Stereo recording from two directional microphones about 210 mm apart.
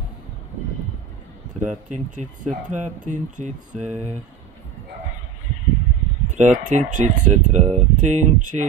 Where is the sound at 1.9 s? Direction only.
35° right (ahead or behind).